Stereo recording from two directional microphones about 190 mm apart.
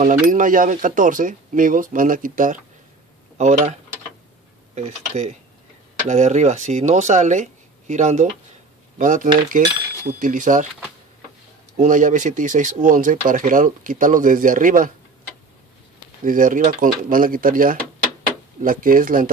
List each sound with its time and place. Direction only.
0.3 s speech: 45° right (ahead or behind)
4.7 s speech: 40° right (ahead or behind)
11.7 s speech: 40° right (ahead or behind)
16.3 s speech: 45° right (ahead or behind)